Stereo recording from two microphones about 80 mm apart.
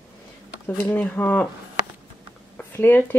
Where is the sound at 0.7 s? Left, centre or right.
Left.